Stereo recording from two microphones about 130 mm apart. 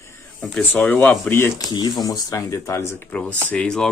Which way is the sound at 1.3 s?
20° left (ahead or behind).